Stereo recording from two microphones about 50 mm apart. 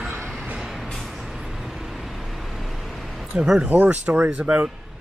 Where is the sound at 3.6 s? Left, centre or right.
Right.